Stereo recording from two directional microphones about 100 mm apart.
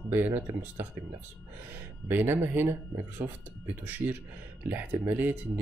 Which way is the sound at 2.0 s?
20° right (ahead or behind).